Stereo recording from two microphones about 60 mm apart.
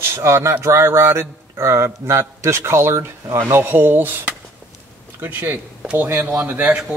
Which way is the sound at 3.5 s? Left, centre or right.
Right.